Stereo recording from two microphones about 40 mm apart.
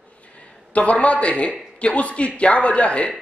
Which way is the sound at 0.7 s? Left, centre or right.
Left.